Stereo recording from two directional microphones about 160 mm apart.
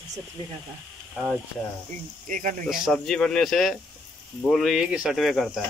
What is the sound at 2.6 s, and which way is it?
Speech, centre (ahead or behind).